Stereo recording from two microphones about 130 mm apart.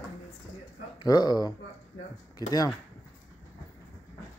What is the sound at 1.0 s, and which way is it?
Speech, 30° left (ahead or behind).